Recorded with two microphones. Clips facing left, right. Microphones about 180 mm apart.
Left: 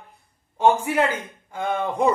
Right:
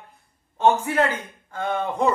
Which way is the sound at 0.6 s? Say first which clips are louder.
Left 1 dB; 10° left (ahead or behind).